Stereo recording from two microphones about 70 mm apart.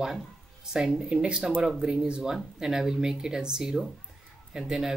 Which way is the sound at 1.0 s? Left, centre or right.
Centre.